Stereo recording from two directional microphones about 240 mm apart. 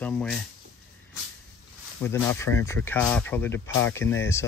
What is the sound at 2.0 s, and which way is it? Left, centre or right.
Speech, centre.